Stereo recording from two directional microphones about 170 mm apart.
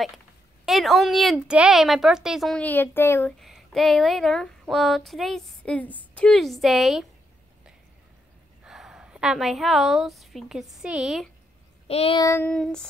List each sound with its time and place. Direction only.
0.7 s speech: centre (ahead or behind)
3.3 s speech: centre (ahead or behind)
8.6 s a woman's voice: centre (ahead or behind)
11.9 s child singing: 35° left (ahead or behind)
12.2 s child singing: 15° left (ahead or behind)